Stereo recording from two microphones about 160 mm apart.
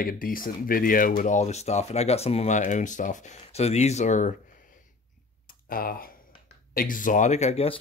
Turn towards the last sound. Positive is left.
turn(degrees=35)  # may be behind; listen again after turning